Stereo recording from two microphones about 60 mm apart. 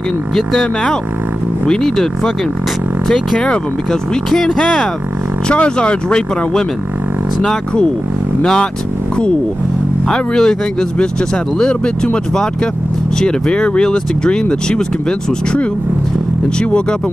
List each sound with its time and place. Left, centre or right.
1.7 s speech: centre
3.3 s speech: centre
5.5 s speech: centre
10.0 s speech: centre